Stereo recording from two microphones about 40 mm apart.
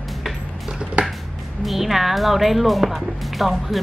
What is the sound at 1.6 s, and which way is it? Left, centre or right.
Speech, centre.